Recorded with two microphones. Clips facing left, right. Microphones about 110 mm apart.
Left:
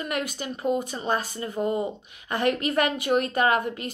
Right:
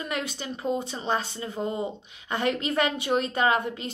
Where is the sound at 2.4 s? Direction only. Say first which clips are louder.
Left 2 dB; 50° left (ahead or behind).